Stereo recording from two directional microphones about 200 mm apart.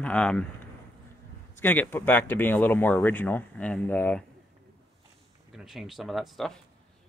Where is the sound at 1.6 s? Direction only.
10° left (ahead or behind).